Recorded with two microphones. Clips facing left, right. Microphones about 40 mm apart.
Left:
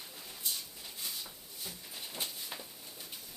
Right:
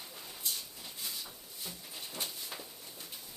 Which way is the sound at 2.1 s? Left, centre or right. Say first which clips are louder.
Even; centre.